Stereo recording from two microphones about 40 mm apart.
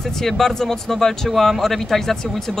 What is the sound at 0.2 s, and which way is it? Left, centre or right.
Speech, centre.